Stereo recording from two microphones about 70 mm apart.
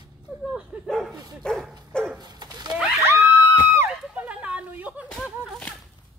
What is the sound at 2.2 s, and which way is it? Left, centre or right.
Dog, right.